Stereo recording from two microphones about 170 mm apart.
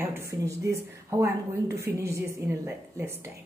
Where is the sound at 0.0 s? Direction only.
15° right (ahead or behind).